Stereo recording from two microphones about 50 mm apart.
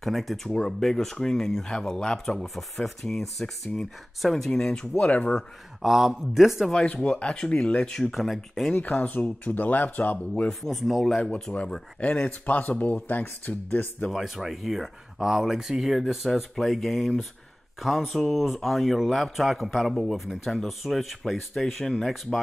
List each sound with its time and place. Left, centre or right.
0.0 s speech: centre
0.5 s speech: centre
4.9 s speech: left
5.8 s speech: centre
6.9 s speech: centre
8.1 s speech: centre
8.7 s speech: left
10.1 s speech: left
10.6 s speech: centre
11.1 s speech: centre; by 13.8 s left
14.1 s speech: centre